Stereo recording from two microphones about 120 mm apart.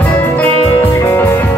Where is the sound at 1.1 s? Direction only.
20° left (ahead or behind).